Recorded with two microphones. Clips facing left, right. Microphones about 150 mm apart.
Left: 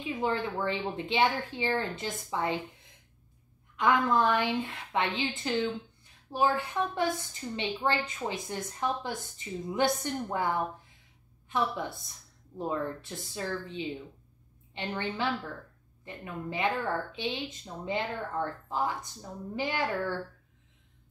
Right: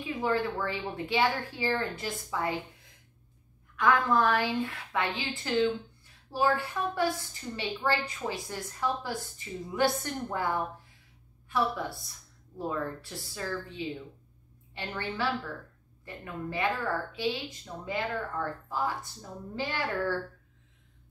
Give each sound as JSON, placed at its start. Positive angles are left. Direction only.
{"t": 0.0, "sound": "a woman's voice", "side_deg": 20}
{"t": 3.7, "sound": "a woman's voice", "side_deg": 20}